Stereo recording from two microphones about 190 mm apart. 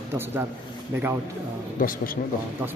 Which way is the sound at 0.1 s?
10° right (ahead or behind).